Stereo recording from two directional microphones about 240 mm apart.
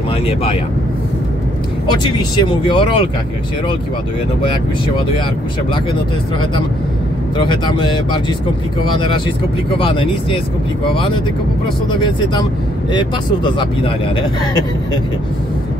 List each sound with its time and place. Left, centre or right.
0.3 s speech: left
1.9 s speech: centre
7.3 s speech: centre
12.9 s speech: centre